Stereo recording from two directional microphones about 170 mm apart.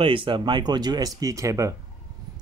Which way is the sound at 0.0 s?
30° right (ahead or behind).